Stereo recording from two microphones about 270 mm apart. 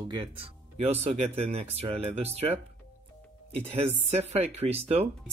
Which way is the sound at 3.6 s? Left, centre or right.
Right.